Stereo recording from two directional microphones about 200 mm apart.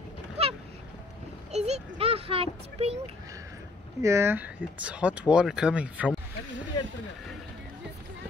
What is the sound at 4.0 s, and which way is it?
Speech, 15° right (ahead or behind).